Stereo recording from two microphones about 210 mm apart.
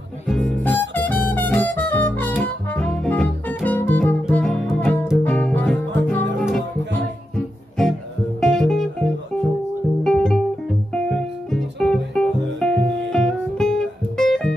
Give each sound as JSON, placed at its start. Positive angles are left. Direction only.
{"t": 0.3, "sound": "music", "side_deg": 5}
{"t": 8.4, "sound": "guitar", "side_deg": 5}
{"t": 10.9, "sound": "music", "side_deg": 5}